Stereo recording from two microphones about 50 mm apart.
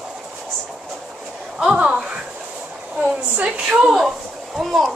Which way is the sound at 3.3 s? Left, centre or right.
Right.